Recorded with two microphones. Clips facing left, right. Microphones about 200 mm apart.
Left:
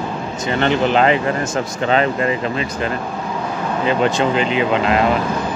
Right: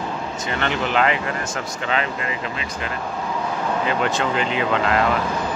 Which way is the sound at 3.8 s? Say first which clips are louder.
Left 8 dB; 25° left (ahead or behind).